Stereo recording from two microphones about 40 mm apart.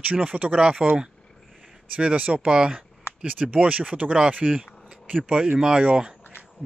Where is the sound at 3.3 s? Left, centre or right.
Right.